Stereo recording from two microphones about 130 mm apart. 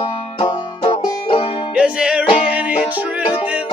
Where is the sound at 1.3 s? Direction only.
45° left (ahead or behind).